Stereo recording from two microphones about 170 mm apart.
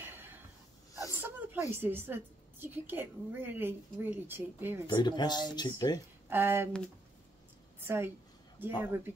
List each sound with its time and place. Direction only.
0.0 s a sound: 10° right (ahead or behind)
1.2 s a woman's voice: 15° right (ahead or behind)
4.8 s speech: 25° left (ahead or behind)
6.2 s speech: 10° right (ahead or behind)
7.8 s a woman's voice: 15° right (ahead or behind)